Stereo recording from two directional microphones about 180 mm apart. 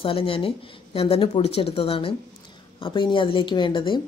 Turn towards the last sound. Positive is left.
turn(degrees=25)  # may be behind; listen again after turning